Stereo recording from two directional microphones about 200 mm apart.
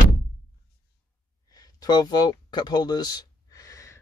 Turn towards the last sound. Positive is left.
turn(degrees=15)  # may be behind; listen again after turning